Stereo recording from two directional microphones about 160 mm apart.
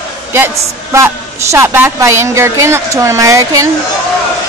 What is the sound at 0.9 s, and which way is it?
A woman's voice, 15° right (ahead or behind).